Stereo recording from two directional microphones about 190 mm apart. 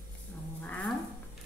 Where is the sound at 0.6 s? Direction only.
10° left (ahead or behind).